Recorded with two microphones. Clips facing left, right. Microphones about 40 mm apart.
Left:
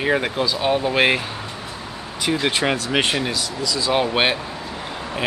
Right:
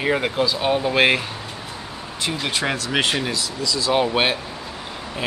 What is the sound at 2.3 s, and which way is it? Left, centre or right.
Speech, left.